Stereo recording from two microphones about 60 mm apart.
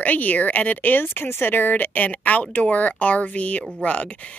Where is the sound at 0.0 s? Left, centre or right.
Left.